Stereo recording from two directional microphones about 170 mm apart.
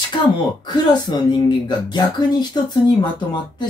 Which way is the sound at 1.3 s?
25° left (ahead or behind).